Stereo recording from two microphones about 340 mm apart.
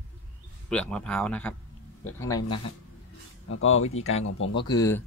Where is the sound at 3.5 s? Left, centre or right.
Left.